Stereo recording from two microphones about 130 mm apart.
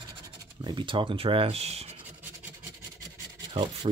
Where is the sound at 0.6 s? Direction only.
35° right (ahead or behind); by 1.9 s 50° right (ahead or behind).